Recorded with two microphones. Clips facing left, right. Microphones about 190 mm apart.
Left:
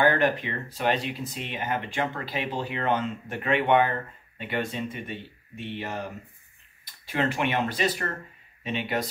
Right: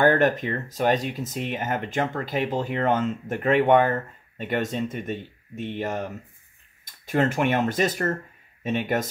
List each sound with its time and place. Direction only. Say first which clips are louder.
0.0 s speech: right 3 dB; 45° right (ahead or behind)